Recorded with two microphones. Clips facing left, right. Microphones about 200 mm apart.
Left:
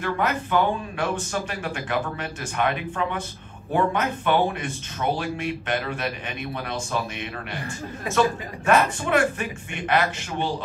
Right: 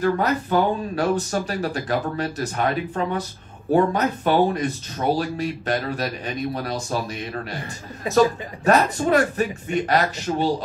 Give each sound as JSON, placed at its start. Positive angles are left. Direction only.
{"t": 0.0, "sound": "speech", "side_deg": -35}